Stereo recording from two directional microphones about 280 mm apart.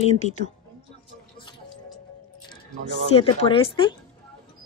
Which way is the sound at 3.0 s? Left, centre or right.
Centre.